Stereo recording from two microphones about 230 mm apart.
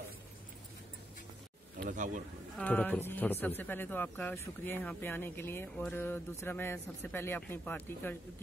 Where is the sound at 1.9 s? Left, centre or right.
Right.